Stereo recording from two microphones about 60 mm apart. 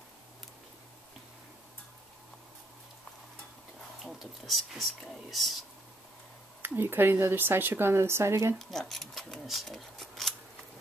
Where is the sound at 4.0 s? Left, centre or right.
Centre.